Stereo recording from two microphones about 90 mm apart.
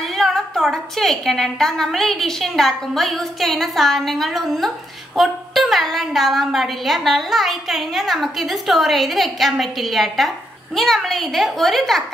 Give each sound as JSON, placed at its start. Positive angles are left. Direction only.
{"t": 0.0, "sound": "a woman's voice", "side_deg": 5}